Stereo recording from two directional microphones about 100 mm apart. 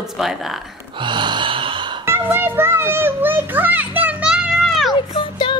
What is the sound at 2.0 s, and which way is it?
A child's voice, 20° right (ahead or behind).